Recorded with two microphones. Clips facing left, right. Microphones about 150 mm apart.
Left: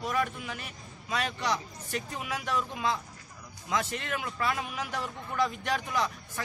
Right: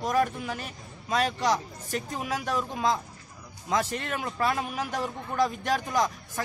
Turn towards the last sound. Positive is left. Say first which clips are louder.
# right 4 dB
turn(degrees=-40)  # may be behind; listen again after turning